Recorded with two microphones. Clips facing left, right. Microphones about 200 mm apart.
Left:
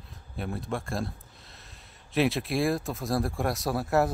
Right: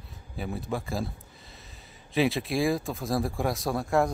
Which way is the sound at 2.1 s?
Centre (ahead or behind).